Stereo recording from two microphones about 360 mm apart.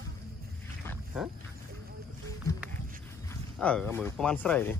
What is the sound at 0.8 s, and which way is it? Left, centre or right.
Wild animals, centre.